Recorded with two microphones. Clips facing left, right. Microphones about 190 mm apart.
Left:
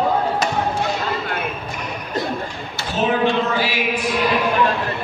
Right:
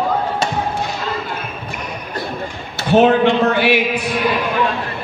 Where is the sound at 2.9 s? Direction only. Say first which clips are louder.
Right 7 dB; 65° right (ahead or behind).